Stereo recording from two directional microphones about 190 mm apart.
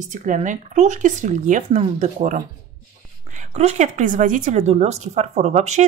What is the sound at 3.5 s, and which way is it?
A woman's voice, 35° right (ahead or behind).